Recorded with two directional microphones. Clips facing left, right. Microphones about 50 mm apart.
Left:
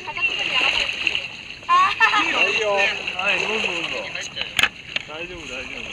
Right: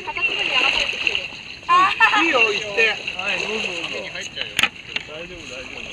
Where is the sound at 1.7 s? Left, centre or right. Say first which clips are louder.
Right 1 dB; centre.